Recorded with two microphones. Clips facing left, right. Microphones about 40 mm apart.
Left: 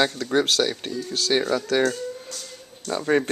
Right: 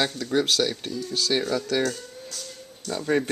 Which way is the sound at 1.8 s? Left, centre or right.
Centre.